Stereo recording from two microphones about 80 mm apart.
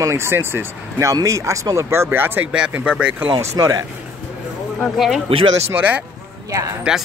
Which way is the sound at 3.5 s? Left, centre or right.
Right.